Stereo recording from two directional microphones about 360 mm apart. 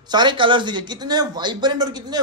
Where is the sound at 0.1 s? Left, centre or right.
Centre.